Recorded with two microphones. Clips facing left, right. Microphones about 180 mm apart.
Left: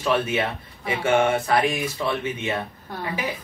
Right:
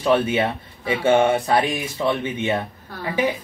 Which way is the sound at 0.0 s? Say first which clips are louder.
Right 4 dB; 25° right (ahead or behind).